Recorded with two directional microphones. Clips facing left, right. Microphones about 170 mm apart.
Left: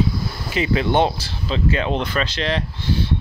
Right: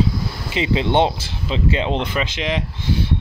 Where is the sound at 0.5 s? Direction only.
20° right (ahead or behind).